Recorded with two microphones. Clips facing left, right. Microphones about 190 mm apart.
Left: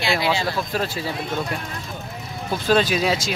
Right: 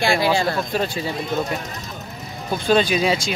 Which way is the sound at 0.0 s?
50° right (ahead or behind).